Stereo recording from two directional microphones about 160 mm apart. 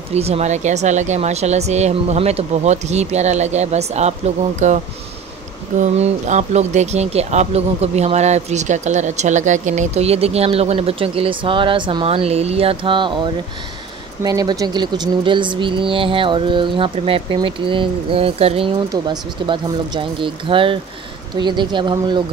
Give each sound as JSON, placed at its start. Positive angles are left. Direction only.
{"t": 0.1, "sound": "speech", "side_deg": -40}